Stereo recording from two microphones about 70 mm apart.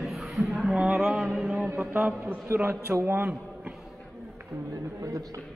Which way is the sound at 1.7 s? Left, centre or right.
Right.